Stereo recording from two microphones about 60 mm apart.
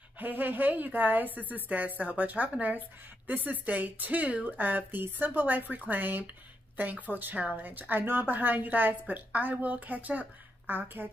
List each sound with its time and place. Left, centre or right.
0.2 s a woman's voice: right